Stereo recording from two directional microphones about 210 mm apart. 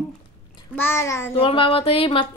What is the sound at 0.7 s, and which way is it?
Speech, 10° left (ahead or behind).